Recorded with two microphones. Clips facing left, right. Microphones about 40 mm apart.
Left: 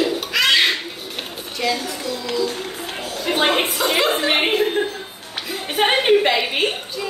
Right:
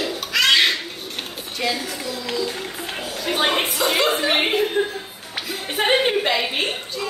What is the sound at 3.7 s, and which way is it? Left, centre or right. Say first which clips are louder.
Speech: left 1 dB; centre.